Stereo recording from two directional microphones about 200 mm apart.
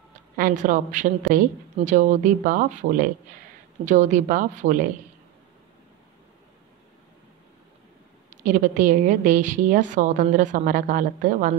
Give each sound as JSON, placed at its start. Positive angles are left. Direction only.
{"t": 0.4, "sound": "a woman's voice", "side_deg": -40}
{"t": 8.3, "sound": "a woman's voice", "side_deg": -40}